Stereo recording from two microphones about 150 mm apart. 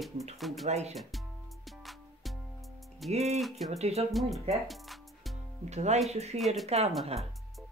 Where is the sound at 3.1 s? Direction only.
45° right (ahead or behind).